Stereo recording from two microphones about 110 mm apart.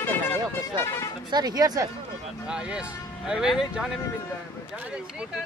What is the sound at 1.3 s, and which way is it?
Speech, 35° right (ahead or behind).